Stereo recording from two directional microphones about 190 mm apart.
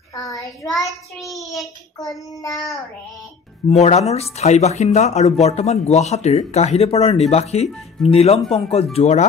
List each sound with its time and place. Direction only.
0.1 s child singing: 20° left (ahead or behind)
0.8 s child singing: centre (ahead or behind)
3.6 s speech: 35° left (ahead or behind)